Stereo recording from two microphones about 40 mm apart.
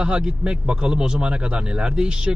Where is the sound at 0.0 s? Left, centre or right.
Right.